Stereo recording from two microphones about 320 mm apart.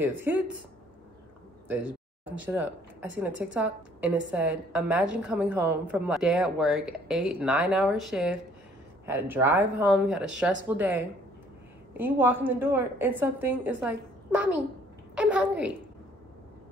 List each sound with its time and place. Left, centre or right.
0.0 s a woman's voice: centre
1.7 s a woman's voice: centre